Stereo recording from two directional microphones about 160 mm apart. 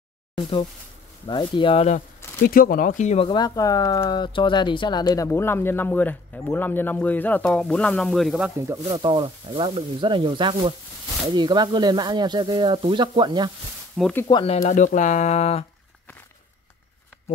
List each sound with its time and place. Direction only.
1.2 s speech: 30° left (ahead or behind)
2.0 s speech: 65° left (ahead or behind); by 3.3 s 45° left (ahead or behind)
3.3 s speech: 25° left (ahead or behind); by 8.5 s centre (ahead or behind)
8.5 s speech: 20° right (ahead or behind)
14.2 s speech: 25° left (ahead or behind)
14.5 s speech: 50° left (ahead or behind)